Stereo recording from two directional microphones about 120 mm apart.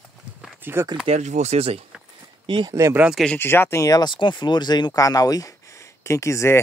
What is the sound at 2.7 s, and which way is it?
Speech, 25° right (ahead or behind).